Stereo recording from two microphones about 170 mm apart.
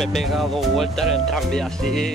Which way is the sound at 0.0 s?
Centre (ahead or behind).